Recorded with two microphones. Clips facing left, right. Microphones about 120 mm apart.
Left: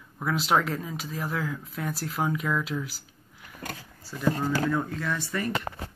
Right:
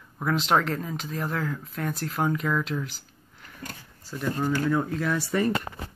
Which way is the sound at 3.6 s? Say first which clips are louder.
Left 2 dB; 65° left (ahead or behind).